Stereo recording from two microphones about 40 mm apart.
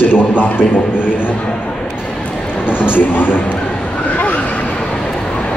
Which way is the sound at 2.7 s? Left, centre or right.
Left.